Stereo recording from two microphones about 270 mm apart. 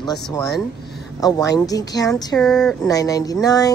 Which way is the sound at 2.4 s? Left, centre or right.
Centre.